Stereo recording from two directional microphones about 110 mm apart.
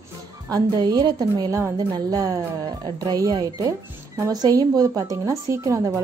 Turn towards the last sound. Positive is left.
turn(degrees=-30)  # may be behind; listen again after turning